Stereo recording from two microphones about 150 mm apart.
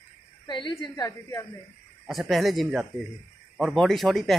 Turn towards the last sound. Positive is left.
turn(degrees=0)  # may be behind; listen again after turning